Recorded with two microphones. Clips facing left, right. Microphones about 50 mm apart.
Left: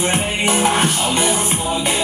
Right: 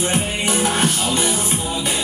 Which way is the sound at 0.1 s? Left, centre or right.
Left.